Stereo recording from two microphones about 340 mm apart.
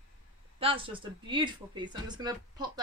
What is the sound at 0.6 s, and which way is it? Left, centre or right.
A woman's voice, centre.